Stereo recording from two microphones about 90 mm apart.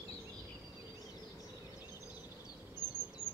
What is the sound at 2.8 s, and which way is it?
Bird vocalization, 50° left (ahead or behind).